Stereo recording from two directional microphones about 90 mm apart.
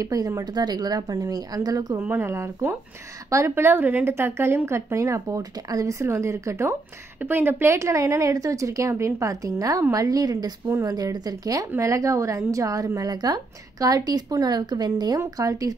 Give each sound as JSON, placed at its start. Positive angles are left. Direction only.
{"t": 0.0, "sound": "a woman's voice", "side_deg": -40}
{"t": 2.0, "sound": "a woman's voice", "side_deg": -25}